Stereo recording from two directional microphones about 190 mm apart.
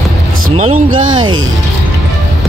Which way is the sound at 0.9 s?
90° right.